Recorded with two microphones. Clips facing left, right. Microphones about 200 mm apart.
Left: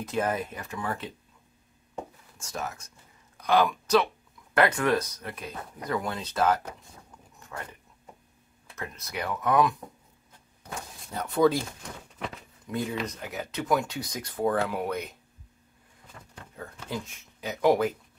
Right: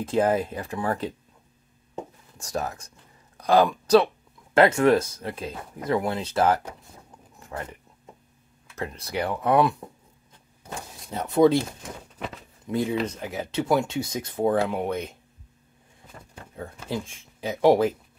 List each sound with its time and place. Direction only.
0.0 s speech: 30° right (ahead or behind)
2.3 s speech: 35° right (ahead or behind)
5.5 s speech: 5° right (ahead or behind)
5.9 s speech: 25° right (ahead or behind)
7.3 s a sound: 30° right (ahead or behind)
8.7 s speech: 30° right (ahead or behind)
11.1 s speech: 25° right (ahead or behind)
12.6 s speech: 25° right (ahead or behind)
16.2 s a sound: 35° right (ahead or behind)
16.9 s speech: 30° right (ahead or behind)